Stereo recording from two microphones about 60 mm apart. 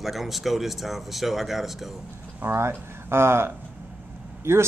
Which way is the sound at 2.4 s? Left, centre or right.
Right.